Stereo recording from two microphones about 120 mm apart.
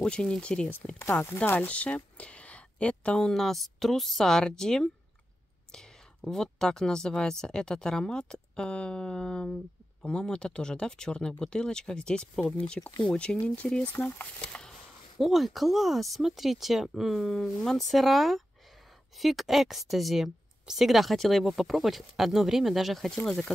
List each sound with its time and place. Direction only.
0.0 s speech: 5° left (ahead or behind)